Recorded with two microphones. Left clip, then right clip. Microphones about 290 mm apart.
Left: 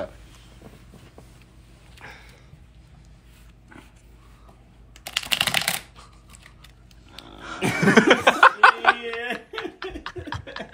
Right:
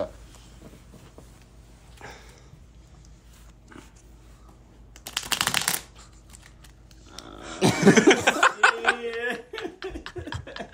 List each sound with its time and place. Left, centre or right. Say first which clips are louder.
2.0 s a sound: left 1 dB; right
5.3 s shuffling cards: left 3 dB; centre
7.2 s roaring cats: left 3 dB; centre
7.7 s chuckle: left 2 dB; centre